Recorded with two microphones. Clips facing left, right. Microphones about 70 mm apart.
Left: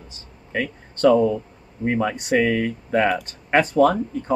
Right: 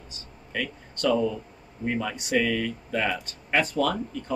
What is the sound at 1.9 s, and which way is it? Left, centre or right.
Speech, left.